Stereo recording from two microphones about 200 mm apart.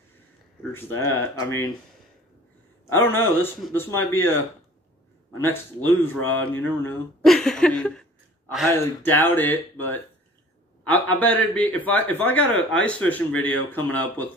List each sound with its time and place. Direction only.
0.7 s a man's voice: 10° left (ahead or behind)
2.9 s a man's voice: 10° left (ahead or behind)
5.9 s a man's voice: 10° left (ahead or behind)